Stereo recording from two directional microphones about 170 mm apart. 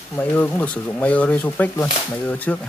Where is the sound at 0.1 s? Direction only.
10° left (ahead or behind).